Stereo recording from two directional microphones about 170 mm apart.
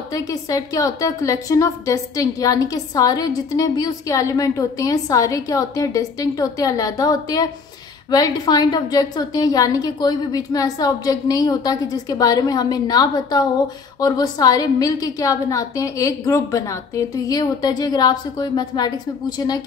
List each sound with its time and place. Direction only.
0.1 s a woman's voice: 20° left (ahead or behind)